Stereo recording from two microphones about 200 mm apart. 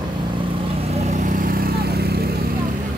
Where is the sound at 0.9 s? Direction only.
35° right (ahead or behind); by 2.3 s 55° right (ahead or behind).